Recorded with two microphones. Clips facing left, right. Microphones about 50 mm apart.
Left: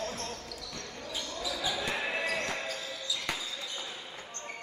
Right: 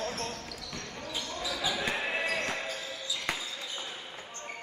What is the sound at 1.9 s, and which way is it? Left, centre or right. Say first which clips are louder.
Basketball bounce: right 1 dB; centre.